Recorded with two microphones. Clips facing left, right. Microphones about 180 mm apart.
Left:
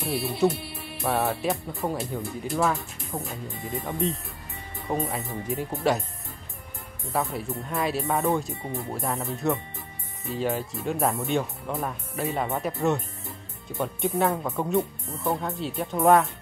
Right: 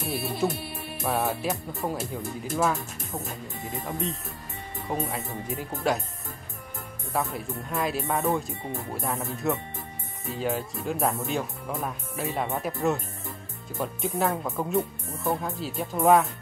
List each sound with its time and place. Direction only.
0.5 s music: 45° right (ahead or behind)
1.0 s speech: centre (ahead or behind)
7.1 s speech: centre (ahead or behind)